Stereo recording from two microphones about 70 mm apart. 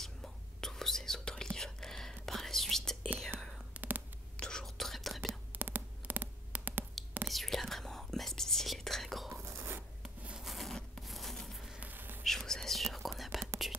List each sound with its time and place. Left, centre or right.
0.0 s whispering: centre
3.7 s whispering: right
4.4 s whispering: centre
5.5 s a sound: right
7.2 s whispering: centre
9.3 s whispering: right
10.4 s a sound: centre
11.8 s a sound: right
12.2 s whispering: centre